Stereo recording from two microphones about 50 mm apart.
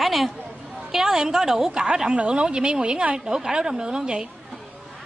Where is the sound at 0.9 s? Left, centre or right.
Centre.